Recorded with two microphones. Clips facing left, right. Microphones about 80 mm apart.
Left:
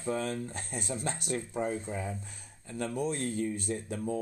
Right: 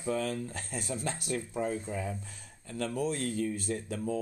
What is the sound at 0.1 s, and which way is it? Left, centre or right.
Speech, left.